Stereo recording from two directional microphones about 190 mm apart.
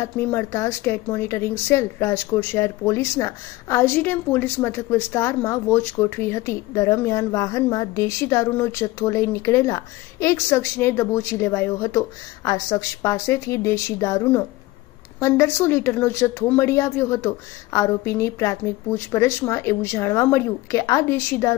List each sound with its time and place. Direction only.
0.0 s speech: 15° left (ahead or behind)